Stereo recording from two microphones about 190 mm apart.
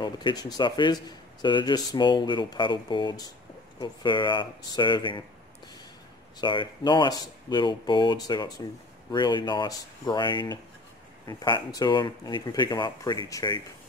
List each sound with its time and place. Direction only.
0.0 s a man's voice: 25° left (ahead or behind)
6.4 s a man's voice: 25° left (ahead or behind)